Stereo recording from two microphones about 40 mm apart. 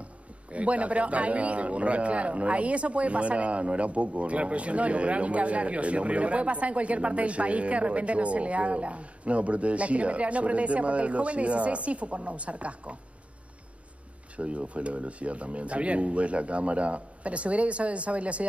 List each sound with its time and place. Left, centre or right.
0.5 s a man's voice: right
14.3 s a man's voice: right